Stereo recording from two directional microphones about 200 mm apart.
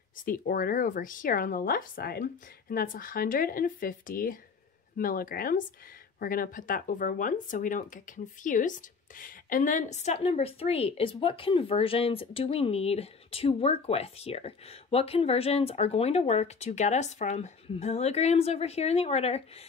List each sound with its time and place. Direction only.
0.2 s speech: 45° left (ahead or behind)